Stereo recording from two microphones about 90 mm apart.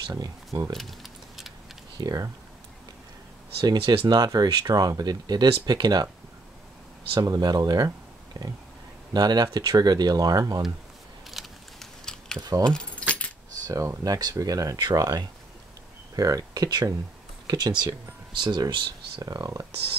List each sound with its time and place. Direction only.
0.1 s speech: 40° right (ahead or behind)
0.7 s a sound: centre (ahead or behind)
2.0 s speech: 45° right (ahead or behind)
3.7 s speech: 65° right (ahead or behind); by 6.0 s 50° right (ahead or behind)
7.2 s speech: 50° right (ahead or behind)
11.2 s a sound: centre (ahead or behind)
12.4 s speech: 45° right (ahead or behind)
13.0 s keys jangling: 10° left (ahead or behind)
13.7 s speech: 40° right (ahead or behind); by 19.2 s 60° right (ahead or behind)
19.2 s speech: 45° right (ahead or behind)